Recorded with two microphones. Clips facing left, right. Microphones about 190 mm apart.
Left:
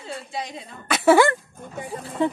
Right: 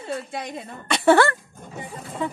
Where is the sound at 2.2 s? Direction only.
30° left (ahead or behind).